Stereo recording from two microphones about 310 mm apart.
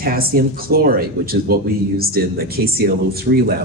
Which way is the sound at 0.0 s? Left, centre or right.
Right.